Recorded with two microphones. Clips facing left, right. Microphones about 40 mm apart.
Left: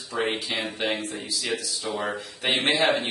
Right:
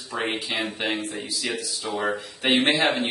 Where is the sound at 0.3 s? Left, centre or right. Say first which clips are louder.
Right 1 dB; centre.